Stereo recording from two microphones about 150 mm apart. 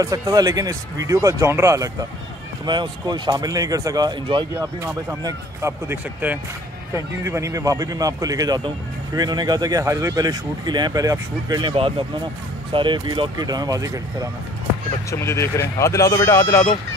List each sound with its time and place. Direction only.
0.0 s a man's voice: 25° right (ahead or behind)
5.2 s a man's voice: 15° right (ahead or behind)
15.0 s speech: 20° left (ahead or behind)